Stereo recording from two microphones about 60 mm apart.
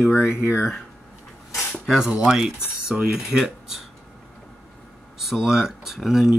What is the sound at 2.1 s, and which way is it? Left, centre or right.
Speech, centre.